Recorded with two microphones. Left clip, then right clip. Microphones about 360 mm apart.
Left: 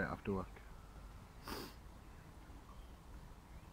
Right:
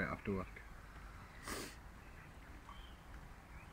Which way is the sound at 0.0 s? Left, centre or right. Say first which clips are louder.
Even; centre.